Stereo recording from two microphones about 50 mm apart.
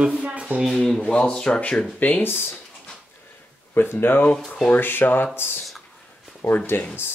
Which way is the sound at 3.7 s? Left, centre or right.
Left.